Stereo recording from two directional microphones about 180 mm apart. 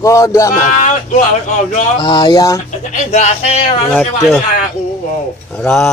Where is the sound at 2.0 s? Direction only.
25° left (ahead or behind).